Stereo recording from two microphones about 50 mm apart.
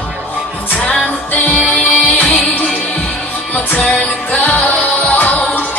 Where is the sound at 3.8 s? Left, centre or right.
Left.